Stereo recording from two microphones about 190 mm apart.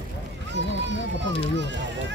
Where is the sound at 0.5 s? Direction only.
70° right (ahead or behind).